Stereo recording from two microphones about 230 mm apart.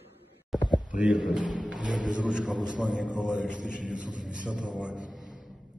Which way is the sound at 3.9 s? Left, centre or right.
Right.